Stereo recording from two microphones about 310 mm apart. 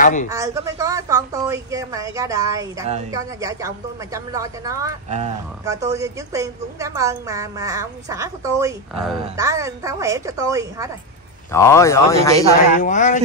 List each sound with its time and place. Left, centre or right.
0.0 s speech: left
0.3 s a woman's voice: centre
11.5 s speech: centre
12.7 s speech: left